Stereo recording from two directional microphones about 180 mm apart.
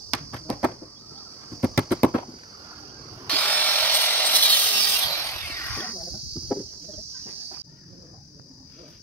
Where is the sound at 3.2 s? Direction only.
10° left (ahead or behind).